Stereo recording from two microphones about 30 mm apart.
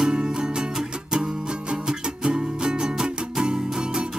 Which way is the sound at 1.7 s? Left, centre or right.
Right.